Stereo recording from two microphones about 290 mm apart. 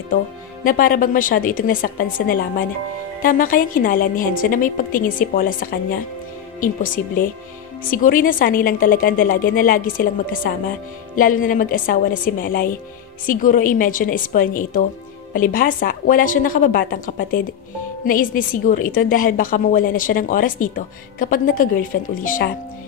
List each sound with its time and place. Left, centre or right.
0.7 s a woman's voice: left